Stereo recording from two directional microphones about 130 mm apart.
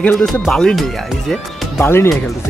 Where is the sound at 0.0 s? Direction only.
5° left (ahead or behind).